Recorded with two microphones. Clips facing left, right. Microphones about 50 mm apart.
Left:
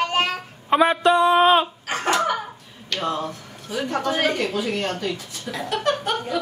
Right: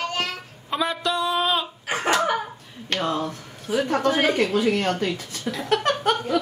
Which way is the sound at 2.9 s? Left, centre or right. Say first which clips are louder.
Right 1 dB; right.